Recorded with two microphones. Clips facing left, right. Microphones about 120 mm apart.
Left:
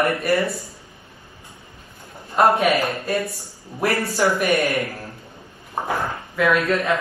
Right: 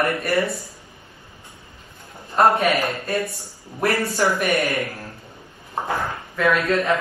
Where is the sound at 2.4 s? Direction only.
5° left (ahead or behind).